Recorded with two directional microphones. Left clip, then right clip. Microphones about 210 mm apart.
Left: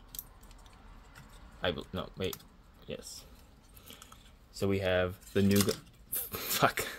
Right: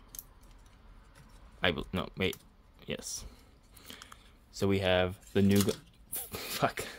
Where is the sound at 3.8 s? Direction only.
30° right (ahead or behind).